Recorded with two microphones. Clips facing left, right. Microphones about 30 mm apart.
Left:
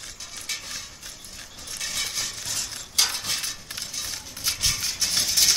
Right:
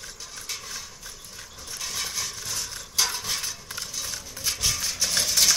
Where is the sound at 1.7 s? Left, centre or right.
Left; by 5.2 s centre.